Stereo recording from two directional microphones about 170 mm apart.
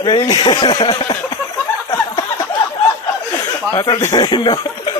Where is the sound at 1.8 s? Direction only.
30° left (ahead or behind).